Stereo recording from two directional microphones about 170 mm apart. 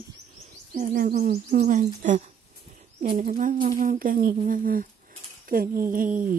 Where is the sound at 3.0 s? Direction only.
55° right (ahead or behind).